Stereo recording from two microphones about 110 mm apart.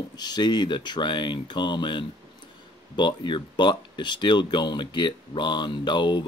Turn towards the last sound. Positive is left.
turn(degrees=45)  # may be behind; listen again after turning